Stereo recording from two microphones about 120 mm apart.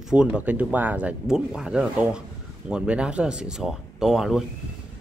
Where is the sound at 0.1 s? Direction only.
10° right (ahead or behind).